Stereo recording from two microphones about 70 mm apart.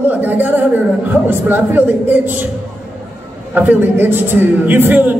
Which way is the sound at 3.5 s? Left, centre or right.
Right.